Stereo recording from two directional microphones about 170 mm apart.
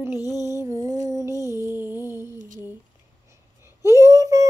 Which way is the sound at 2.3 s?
50° right (ahead or behind).